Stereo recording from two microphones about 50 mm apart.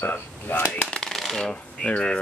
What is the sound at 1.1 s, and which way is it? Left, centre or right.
Coin, centre.